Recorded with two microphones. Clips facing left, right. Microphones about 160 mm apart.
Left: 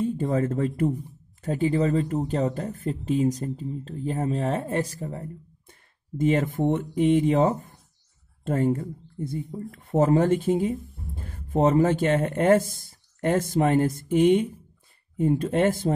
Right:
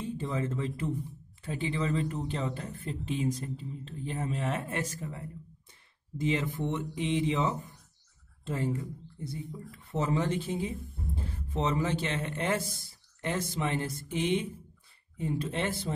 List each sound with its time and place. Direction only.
0.0 s speech: 50° left (ahead or behind)
6.1 s speech: 50° left (ahead or behind)